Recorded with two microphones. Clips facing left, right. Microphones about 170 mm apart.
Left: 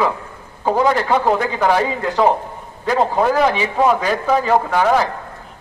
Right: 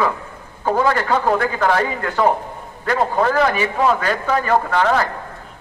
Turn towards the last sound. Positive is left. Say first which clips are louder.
# left 2 dB
turn(degrees=10)  # may be behind; listen again after turning